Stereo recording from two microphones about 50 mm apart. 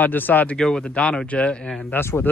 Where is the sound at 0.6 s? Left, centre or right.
Centre.